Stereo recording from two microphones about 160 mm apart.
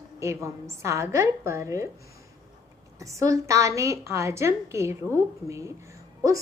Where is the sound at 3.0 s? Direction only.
20° right (ahead or behind).